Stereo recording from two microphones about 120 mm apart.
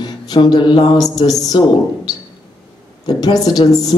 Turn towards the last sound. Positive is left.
turn(degrees=35)  # may be behind; listen again after turning